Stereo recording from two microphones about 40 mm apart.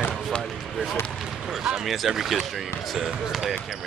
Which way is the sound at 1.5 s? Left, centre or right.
Centre.